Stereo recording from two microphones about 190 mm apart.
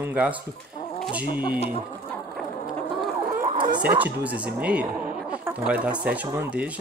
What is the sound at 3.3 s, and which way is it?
Chicken, 45° right (ahead or behind).